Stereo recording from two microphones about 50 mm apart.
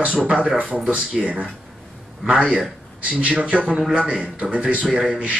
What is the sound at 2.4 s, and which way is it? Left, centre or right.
Speech, centre.